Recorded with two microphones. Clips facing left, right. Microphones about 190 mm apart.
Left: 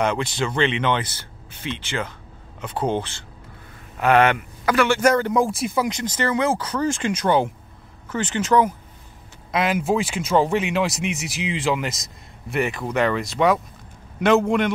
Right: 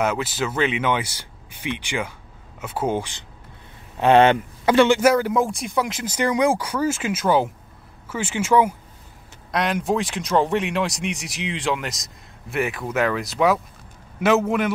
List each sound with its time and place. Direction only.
0.0 s speech: 5° right (ahead or behind)
4.0 s speech: 25° right (ahead or behind)
4.9 s speech: 5° right (ahead or behind)
9.5 s speech: 5° left (ahead or behind)